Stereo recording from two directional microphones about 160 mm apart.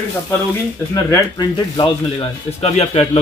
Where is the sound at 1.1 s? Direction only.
25° left (ahead or behind).